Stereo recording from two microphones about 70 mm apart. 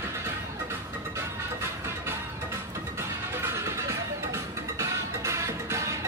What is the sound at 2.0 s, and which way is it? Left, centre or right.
Music, right.